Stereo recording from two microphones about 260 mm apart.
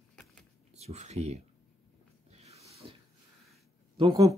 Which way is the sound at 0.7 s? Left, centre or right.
Right.